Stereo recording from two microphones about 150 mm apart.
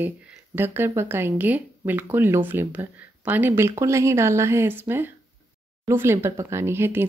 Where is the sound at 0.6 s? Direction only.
15° right (ahead or behind).